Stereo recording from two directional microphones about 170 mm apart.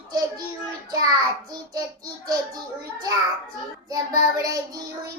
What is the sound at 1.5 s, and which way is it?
Child singing, 25° right (ahead or behind).